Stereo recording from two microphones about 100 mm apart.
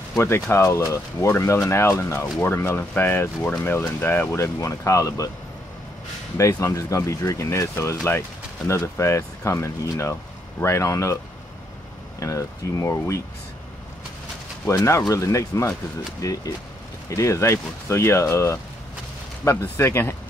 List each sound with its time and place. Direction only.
0.2 s speech: 25° left (ahead or behind)
4.6 s speech: 35° left (ahead or behind)
6.3 s speech: 30° left (ahead or behind)
12.2 s speech: 30° left (ahead or behind)
14.7 s speech: 30° left (ahead or behind)